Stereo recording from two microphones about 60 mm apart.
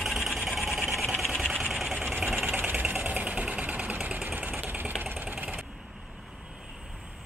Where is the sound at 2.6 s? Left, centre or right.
Right.